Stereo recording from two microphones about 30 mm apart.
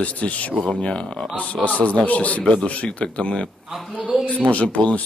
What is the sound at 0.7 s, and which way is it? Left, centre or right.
Speech, left.